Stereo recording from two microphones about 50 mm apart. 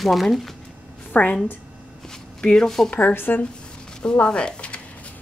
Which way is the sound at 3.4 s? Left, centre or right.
Centre.